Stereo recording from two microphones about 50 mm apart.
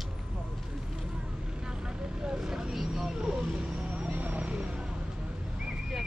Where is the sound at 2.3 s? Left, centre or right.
Centre.